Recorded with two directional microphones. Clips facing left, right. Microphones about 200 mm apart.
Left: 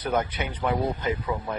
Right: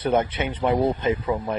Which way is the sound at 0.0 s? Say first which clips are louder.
Right 5 dB; 25° right (ahead or behind).